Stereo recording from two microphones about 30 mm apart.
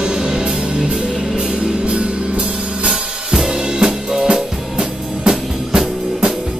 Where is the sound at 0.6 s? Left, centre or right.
Right.